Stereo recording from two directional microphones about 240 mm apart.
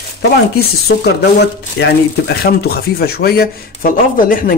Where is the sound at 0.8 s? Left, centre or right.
Left.